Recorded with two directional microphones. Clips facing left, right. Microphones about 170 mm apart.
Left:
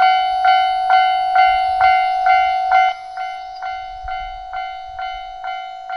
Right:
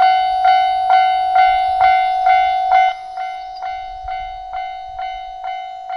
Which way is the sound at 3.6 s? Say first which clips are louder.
Right 1 dB; 25° right (ahead or behind).